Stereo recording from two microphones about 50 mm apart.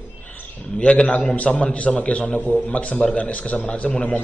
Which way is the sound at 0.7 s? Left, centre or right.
Left.